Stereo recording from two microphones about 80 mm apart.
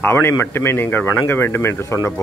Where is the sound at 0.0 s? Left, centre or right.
Left.